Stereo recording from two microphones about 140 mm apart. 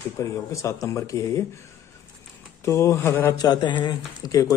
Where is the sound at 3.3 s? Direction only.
30° left (ahead or behind).